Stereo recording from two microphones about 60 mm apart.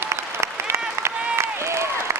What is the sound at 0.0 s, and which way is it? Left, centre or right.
Applause, right.